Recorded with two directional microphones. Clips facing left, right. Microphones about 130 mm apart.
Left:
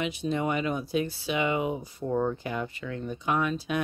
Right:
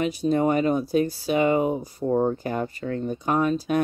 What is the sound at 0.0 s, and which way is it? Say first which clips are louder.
Speech: right 7 dB; 40° right (ahead or behind).